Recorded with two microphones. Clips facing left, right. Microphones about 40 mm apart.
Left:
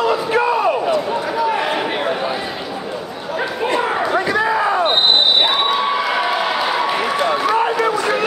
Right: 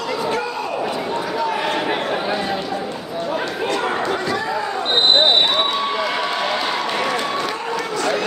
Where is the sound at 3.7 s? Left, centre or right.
Centre.